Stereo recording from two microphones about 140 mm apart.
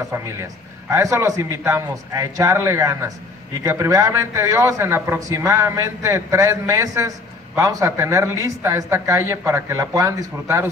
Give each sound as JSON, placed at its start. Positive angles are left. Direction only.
{"t": 0.1, "sound": "a man's voice", "side_deg": -20}